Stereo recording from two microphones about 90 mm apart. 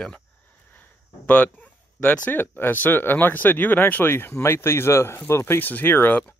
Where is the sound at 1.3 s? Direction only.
20° left (ahead or behind).